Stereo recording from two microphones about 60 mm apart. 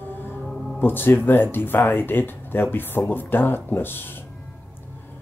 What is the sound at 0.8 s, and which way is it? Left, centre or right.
Speech, left.